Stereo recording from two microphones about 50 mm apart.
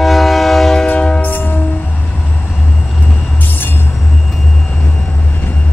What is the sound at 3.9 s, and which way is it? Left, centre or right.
Train, centre.